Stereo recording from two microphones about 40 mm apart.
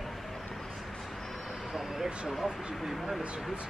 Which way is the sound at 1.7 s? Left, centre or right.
Centre.